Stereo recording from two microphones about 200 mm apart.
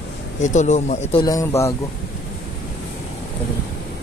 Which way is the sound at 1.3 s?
15° left (ahead or behind).